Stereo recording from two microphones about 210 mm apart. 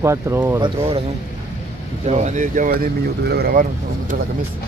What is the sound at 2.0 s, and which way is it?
Speech, 35° right (ahead or behind).